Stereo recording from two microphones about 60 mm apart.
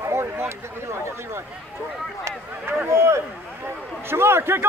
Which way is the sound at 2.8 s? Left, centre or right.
Right.